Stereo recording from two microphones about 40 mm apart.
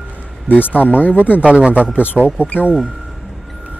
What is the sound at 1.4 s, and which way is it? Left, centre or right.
Speech, right.